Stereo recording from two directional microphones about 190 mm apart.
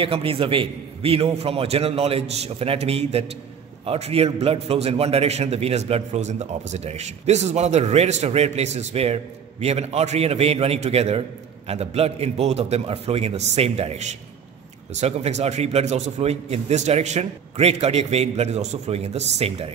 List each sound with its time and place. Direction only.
0.0 s a man's voice: 30° right (ahead or behind)